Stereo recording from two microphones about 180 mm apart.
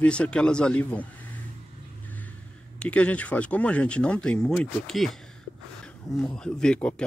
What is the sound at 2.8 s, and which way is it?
Speech, 5° left (ahead or behind).